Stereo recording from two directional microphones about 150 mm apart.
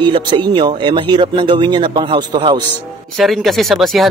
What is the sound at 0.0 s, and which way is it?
Speech, 30° right (ahead or behind).